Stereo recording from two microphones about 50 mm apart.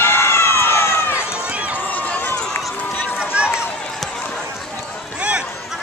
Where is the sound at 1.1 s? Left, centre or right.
Right.